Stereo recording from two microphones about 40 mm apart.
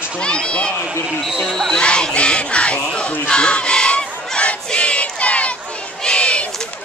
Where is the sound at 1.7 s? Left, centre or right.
Left.